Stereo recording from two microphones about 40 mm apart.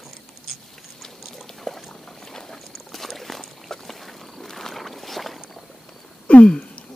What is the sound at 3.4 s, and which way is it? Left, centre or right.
Boat, centre.